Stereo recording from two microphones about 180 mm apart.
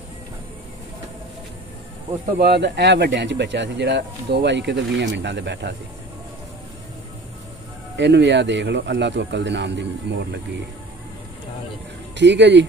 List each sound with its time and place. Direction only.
2.3 s speech: 65° right (ahead or behind)
8.0 s speech: 75° right (ahead or behind)
12.2 s speech: 75° right (ahead or behind)